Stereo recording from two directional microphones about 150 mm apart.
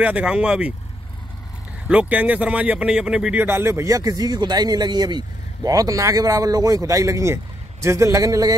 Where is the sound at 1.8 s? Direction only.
10° right (ahead or behind).